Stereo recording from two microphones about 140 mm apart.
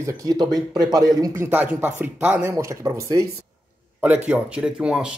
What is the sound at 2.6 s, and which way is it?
Speech, 20° right (ahead or behind).